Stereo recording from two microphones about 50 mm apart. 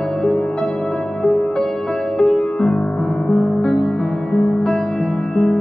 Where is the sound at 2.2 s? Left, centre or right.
Centre.